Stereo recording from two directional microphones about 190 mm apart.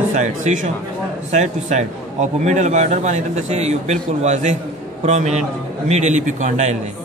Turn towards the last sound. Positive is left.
turn(degrees=-40)  # may be behind; listen again after turning